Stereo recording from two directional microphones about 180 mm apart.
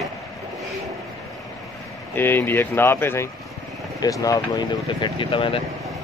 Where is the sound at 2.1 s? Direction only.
10° left (ahead or behind); by 5.6 s 30° left (ahead or behind).